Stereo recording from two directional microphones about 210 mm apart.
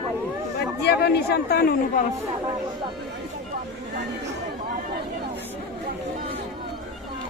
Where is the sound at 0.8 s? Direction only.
50° left (ahead or behind).